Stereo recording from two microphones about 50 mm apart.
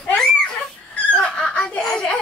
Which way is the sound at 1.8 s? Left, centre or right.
Centre.